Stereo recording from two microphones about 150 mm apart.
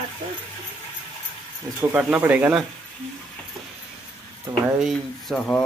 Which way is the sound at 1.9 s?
10° right (ahead or behind).